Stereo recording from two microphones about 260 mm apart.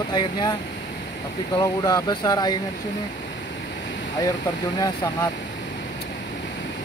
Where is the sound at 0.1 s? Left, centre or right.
Centre.